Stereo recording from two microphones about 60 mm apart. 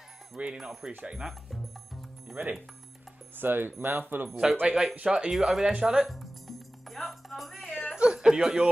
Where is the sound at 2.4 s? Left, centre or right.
Right.